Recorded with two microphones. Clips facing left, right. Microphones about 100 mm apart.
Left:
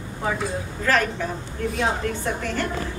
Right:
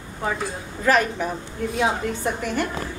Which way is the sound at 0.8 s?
15° right (ahead or behind).